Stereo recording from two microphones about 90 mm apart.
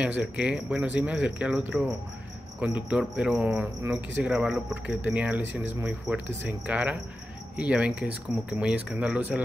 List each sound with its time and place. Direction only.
0.0 s speech: 15° right (ahead or behind)